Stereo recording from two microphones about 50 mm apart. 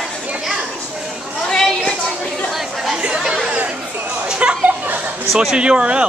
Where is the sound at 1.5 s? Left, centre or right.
Centre.